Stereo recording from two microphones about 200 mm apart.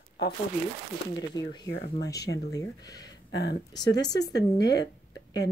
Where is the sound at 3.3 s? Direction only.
55° left (ahead or behind).